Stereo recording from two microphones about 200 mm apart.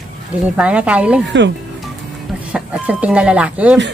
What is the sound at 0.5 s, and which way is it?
Speech, 5° right (ahead or behind).